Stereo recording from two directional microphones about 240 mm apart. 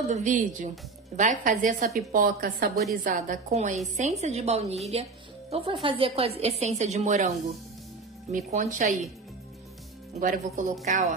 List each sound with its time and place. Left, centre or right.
0.1 s a woman's voice: right
8.3 s a woman's voice: right
10.1 s a woman's voice: right